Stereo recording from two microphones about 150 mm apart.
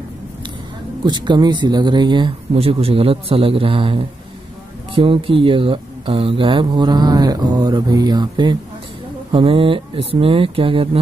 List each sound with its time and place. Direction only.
1.0 s speech: 30° right (ahead or behind)